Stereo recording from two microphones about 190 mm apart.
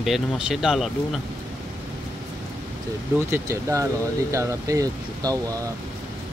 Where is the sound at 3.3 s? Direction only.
15° right (ahead or behind).